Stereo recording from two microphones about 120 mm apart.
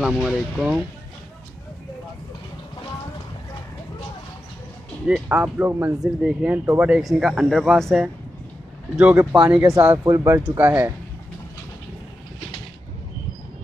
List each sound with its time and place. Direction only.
0.0 s speech: 5° right (ahead or behind)
5.0 s speech: 5° right (ahead or behind)
5.9 s speech: 10° right (ahead or behind)
7.0 s speech: centre (ahead or behind)
9.0 s speech: 15° right (ahead or behind)
10.0 s speech: 20° right (ahead or behind)